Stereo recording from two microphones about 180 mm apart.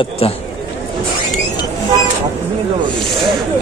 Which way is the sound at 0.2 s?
30° left (ahead or behind).